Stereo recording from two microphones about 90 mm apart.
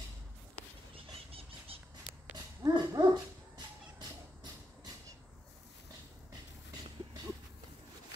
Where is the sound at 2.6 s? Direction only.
40° right (ahead or behind).